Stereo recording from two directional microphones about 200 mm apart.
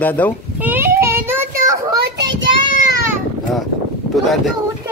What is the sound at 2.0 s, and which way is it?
Child singing, 60° right (ahead or behind).